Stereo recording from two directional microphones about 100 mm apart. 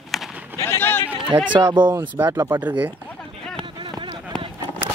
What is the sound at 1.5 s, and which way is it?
Speech, 50° right (ahead or behind).